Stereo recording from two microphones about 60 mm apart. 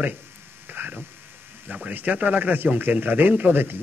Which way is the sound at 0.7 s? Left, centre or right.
Right.